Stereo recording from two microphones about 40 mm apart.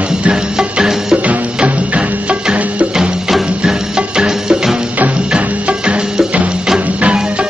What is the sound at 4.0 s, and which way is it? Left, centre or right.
Music, centre.